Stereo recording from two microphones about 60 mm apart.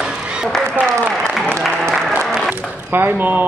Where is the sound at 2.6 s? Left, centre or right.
Right.